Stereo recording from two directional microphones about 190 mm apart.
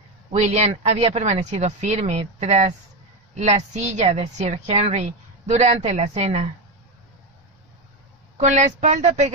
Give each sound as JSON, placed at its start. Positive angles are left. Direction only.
{"t": 0.3, "sound": "a woman's voice", "side_deg": -35}
{"t": 8.4, "sound": "a woman's voice", "side_deg": -35}